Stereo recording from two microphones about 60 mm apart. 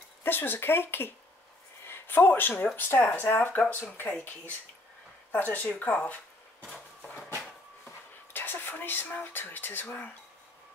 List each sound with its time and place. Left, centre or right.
0.2 s speech: left
8.3 s speech: left